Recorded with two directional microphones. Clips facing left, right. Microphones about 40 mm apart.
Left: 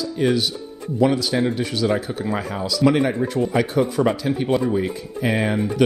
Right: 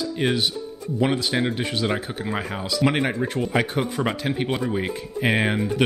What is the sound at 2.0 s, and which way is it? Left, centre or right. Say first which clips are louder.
Speech: left 3 dB; centre.